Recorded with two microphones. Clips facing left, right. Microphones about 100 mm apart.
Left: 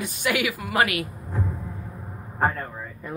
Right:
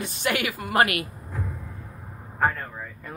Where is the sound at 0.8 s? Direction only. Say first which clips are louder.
Right 1 dB; 55° right (ahead or behind).